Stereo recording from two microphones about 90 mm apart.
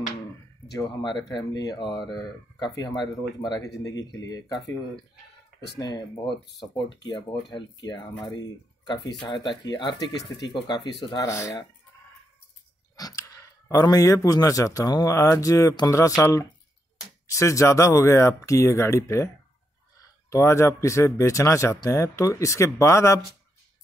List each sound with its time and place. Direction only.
1.3 s speech: 50° left (ahead or behind)
5.8 s speech: 50° left (ahead or behind); by 7.6 s 65° left (ahead or behind)
8.3 s speech: 45° left (ahead or behind)
9.4 s speech: 55° left (ahead or behind)
11.2 s speech: 30° left (ahead or behind)
12.9 s a sound: 45° left (ahead or behind)
13.7 s speech: 40° left (ahead or behind)
20.2 s speech: 35° left (ahead or behind)